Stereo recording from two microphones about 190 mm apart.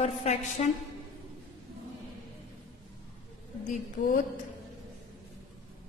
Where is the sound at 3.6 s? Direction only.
40° left (ahead or behind).